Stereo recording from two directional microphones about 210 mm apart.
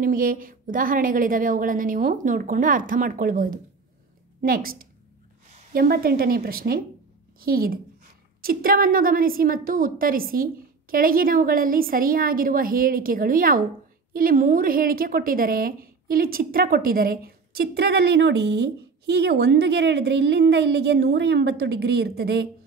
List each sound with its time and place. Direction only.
0.0 s a woman's voice: 40° right (ahead or behind)